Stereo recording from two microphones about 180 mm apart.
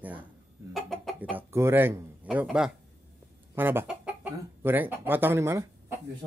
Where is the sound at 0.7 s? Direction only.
Centre (ahead or behind).